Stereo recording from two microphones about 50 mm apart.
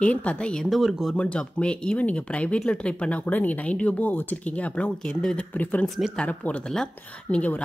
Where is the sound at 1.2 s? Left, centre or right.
Left.